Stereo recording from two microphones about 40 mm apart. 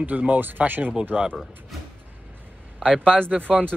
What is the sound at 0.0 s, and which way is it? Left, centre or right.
Speech, right.